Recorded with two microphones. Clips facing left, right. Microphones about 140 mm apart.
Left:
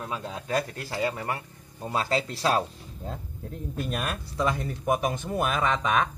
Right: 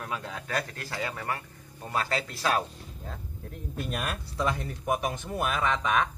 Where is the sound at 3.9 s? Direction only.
30° left (ahead or behind).